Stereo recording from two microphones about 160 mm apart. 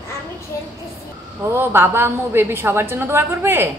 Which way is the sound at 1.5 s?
15° right (ahead or behind).